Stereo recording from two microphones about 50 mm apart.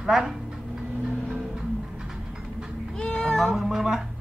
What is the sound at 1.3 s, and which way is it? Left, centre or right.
Music, centre.